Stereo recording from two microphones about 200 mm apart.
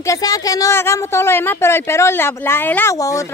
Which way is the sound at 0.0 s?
15° left (ahead or behind).